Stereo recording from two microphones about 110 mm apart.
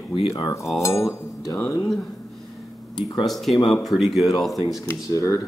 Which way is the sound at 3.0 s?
40° left (ahead or behind).